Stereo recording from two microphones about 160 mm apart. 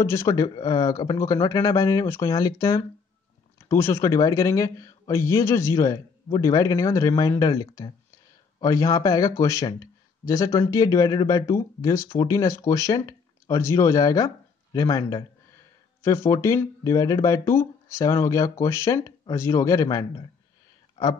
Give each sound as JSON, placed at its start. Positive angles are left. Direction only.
{"t": 0.0, "sound": "speech", "side_deg": 15}